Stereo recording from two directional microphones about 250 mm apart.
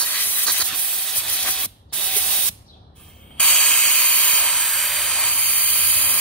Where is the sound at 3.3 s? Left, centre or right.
Centre.